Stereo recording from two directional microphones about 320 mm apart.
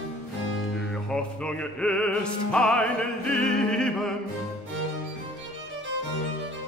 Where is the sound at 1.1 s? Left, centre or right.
Centre.